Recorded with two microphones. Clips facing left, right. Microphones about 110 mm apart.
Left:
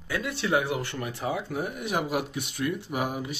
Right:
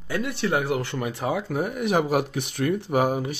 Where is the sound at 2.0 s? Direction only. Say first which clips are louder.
Right 6 dB; 55° right (ahead or behind).